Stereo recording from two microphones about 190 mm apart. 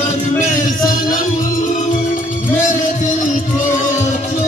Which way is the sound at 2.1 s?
40° left (ahead or behind).